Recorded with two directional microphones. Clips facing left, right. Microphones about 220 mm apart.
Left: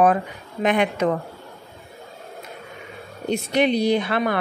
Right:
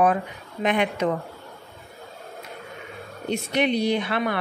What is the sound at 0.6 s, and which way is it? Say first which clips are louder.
Speech: left 3 dB; 45° left (ahead or behind).